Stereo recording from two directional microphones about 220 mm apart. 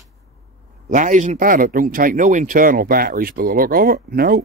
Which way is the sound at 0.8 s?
35° right (ahead or behind).